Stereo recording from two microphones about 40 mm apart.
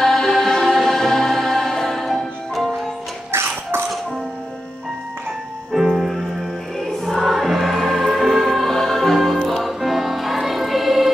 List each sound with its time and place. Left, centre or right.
0.0 s singing: centre
1.7 s music: centre
3.3 s music: right
5.7 s music: centre
7.2 s music: centre